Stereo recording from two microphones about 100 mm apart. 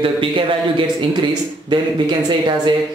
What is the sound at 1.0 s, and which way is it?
Speech, 50° right (ahead or behind).